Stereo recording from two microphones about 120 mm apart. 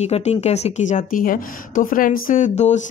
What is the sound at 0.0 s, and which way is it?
Speech, 70° left (ahead or behind).